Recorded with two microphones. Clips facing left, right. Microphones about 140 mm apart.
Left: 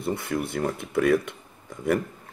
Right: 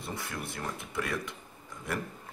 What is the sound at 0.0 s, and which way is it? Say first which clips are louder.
Speech: left 11 dB; 55° left (ahead or behind).